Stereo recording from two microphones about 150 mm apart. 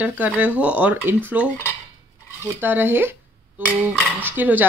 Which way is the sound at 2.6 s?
15° right (ahead or behind).